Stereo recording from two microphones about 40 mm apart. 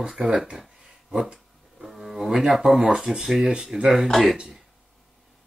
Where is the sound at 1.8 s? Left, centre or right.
Centre.